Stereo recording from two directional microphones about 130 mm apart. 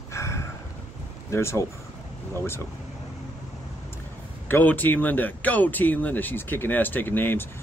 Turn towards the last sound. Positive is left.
turn(degrees=15)  # may be behind; listen again after turning